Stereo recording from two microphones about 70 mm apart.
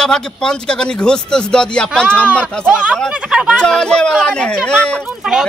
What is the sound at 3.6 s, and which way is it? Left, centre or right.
A man's voice, centre.